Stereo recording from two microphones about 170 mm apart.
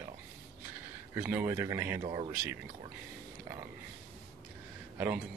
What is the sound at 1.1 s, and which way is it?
Speech, 10° right (ahead or behind).